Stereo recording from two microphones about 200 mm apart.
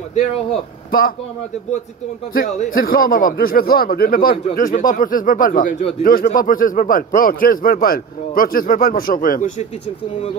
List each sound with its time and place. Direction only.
2.3 s a man's voice: 45° left (ahead or behind)